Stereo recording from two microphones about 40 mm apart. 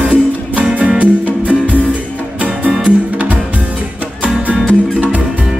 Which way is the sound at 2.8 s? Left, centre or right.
Right.